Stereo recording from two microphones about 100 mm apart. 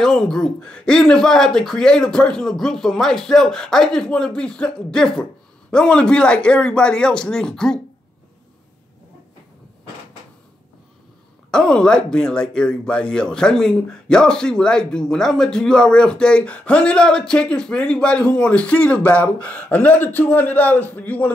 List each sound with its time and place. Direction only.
0.0 s speech: 5° left (ahead or behind)
11.5 s speech: 10° left (ahead or behind)